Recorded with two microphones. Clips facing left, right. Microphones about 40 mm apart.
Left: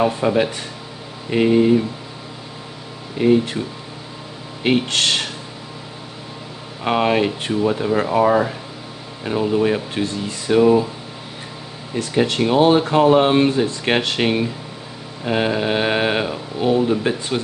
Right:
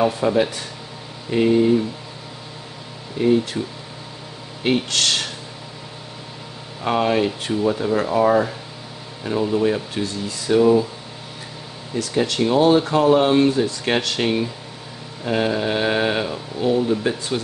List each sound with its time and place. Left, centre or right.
0.0 s speech: left
3.2 s speech: left
4.8 s speech: left
6.8 s speech: left
11.9 s speech: left